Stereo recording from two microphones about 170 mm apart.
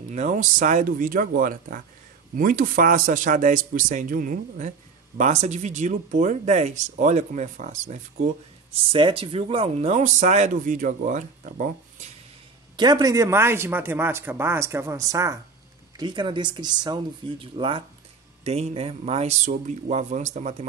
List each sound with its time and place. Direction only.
0.1 s a man's voice: 40° right (ahead or behind)
8.9 s a man's voice: 30° right (ahead or behind); by 11.7 s 50° right (ahead or behind)
12.7 s speech: 25° right (ahead or behind); by 20.6 s 40° right (ahead or behind)